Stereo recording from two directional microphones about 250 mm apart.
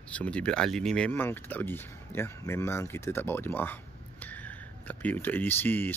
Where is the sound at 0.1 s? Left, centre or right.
Centre.